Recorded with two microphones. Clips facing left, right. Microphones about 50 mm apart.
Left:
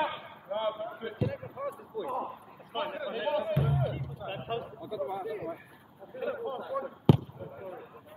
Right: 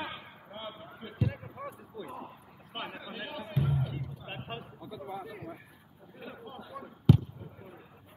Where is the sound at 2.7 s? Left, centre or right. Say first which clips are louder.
Left 7 dB; centre.